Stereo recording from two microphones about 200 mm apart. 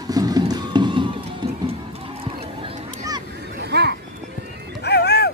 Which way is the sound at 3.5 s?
55° right (ahead or behind).